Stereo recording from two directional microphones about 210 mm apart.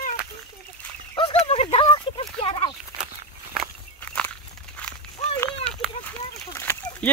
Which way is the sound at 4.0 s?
5° left (ahead or behind).